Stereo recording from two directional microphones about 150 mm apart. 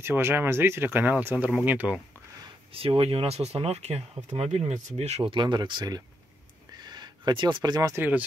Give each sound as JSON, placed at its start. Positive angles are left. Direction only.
{"t": 0.0, "sound": "speech", "side_deg": -15}
{"t": 2.7, "sound": "speech", "side_deg": -40}
{"t": 6.8, "sound": "a sound", "side_deg": -30}